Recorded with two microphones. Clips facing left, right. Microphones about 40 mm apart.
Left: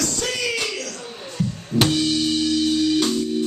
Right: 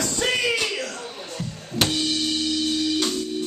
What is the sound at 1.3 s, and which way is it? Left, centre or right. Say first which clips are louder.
Music: left 10 dB; centre.